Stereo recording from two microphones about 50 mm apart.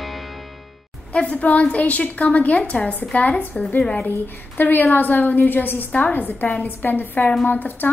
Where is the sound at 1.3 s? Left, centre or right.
Left.